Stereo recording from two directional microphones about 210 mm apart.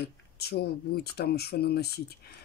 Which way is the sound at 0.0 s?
50° left (ahead or behind).